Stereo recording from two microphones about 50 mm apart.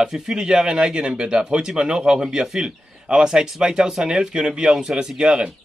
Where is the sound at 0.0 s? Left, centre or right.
Centre.